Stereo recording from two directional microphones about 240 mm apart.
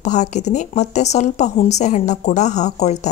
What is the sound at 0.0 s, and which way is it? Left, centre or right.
Speech, left.